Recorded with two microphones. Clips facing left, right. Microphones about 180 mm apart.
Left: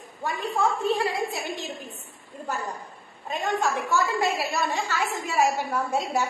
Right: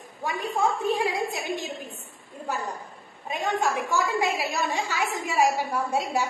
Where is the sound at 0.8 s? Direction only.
15° right (ahead or behind).